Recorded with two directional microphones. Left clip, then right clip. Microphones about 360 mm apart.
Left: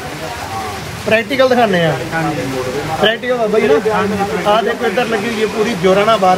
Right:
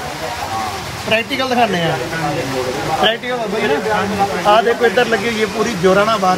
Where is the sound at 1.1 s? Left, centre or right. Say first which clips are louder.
Left 5 dB; centre.